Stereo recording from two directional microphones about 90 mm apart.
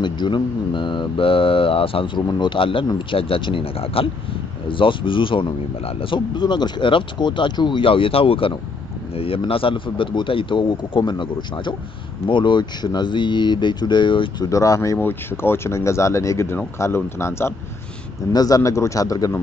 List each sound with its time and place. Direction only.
0.0 s speech: 60° left (ahead or behind); by 2.2 s 90° left
2.2 s speech: 60° left (ahead or behind)
14.4 s speech: 40° left (ahead or behind)
15.0 s speech: 25° left (ahead or behind)
18.3 s speech: 45° left (ahead or behind)